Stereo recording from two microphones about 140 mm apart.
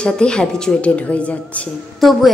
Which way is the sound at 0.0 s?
5° left (ahead or behind).